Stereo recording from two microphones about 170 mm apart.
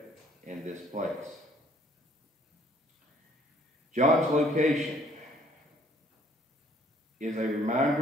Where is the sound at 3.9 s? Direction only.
45° right (ahead or behind).